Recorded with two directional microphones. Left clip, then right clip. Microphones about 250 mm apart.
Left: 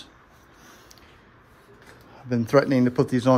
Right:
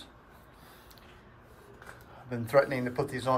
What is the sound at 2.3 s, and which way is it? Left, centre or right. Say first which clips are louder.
Speech: left 6 dB; left.